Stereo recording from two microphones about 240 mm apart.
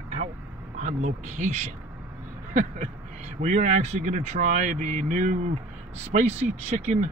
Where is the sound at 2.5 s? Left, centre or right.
Right.